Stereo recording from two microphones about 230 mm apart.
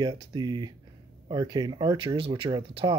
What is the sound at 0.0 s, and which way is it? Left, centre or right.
Speech, centre.